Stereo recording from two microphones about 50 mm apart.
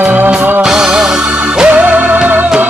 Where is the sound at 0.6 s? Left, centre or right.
Centre.